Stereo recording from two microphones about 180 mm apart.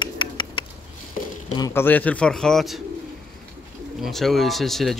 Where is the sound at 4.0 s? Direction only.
Centre (ahead or behind).